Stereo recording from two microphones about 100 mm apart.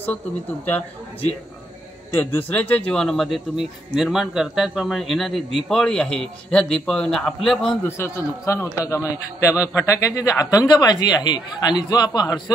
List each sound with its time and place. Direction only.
2.1 s speech: 15° left (ahead or behind)
7.8 s speech: 20° left (ahead or behind); by 12.3 s 45° left (ahead or behind)